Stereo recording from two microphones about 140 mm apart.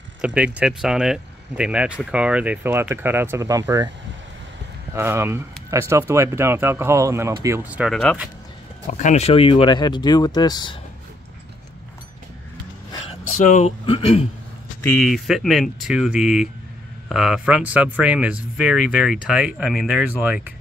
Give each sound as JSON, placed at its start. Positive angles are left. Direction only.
{"t": 0.2, "sound": "speech", "side_deg": -10}
{"t": 4.9, "sound": "speech", "side_deg": -15}
{"t": 7.9, "sound": "speech", "side_deg": 10}
{"t": 8.9, "sound": "speech", "side_deg": 55}
{"t": 13.3, "sound": "speech", "side_deg": 60}
{"t": 13.8, "sound": "speech", "side_deg": 45}
{"t": 14.8, "sound": "speech", "side_deg": 5}